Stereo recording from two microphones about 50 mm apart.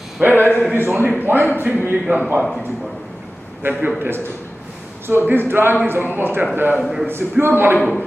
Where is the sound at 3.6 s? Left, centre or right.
Right.